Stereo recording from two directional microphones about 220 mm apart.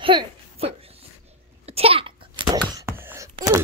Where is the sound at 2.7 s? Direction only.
10° right (ahead or behind).